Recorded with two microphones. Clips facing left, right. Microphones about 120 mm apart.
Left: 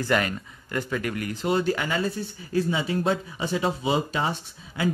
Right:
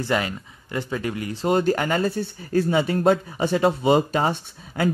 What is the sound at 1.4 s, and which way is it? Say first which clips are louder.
Speech: right 4 dB; 45° right (ahead or behind).